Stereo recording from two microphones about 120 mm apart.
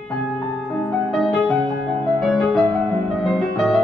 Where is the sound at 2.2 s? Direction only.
5° left (ahead or behind).